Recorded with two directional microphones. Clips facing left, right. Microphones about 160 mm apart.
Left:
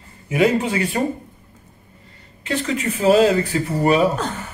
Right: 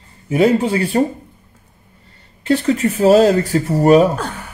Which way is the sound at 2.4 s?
35° right (ahead or behind).